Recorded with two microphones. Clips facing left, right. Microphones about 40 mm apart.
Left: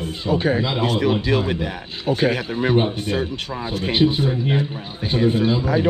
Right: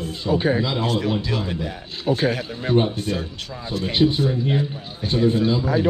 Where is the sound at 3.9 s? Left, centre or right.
Centre.